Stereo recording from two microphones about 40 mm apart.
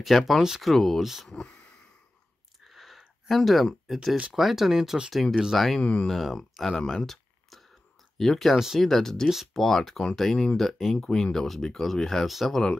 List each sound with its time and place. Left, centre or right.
0.0 s speech: centre
1.3 s speech: left
2.6 s a sound: centre
4.3 s speech: centre
5.8 s speech: left
6.0 s speech: centre
6.8 s a sound: centre
8.2 s speech: centre
11.0 s speech: centre
12.3 s speech: centre